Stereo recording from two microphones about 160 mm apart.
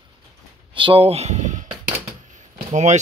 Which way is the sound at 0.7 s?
35° right (ahead or behind).